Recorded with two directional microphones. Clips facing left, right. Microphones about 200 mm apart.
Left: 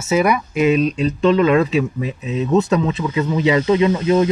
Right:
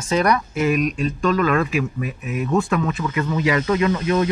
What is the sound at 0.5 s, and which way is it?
Speech, 20° left (ahead or behind).